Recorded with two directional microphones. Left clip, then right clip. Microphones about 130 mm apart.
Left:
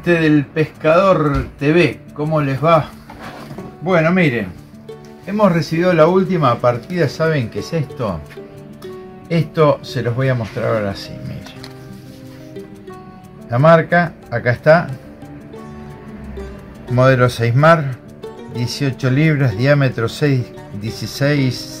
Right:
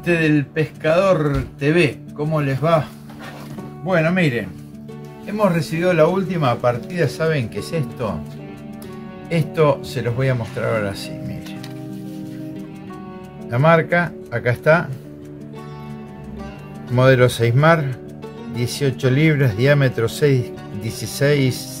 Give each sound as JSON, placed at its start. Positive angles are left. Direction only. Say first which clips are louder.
{"t": 0.0, "sound": "speech", "louder": "left 4 dB", "side_deg": -10}
{"t": 3.8, "sound": "speech", "louder": "left 4 dB", "side_deg": -10}
{"t": 9.3, "sound": "speech", "louder": "left 3 dB", "side_deg": -20}
{"t": 13.5, "sound": "speech", "louder": "left 4 dB", "side_deg": -25}
{"t": 16.9, "sound": "speech", "louder": "left 1 dB", "side_deg": -60}